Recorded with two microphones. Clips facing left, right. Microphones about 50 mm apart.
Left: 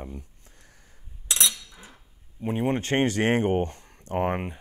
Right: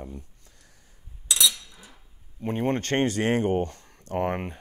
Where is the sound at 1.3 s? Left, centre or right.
Left.